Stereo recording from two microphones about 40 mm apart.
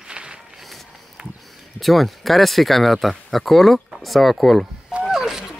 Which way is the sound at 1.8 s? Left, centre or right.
Centre.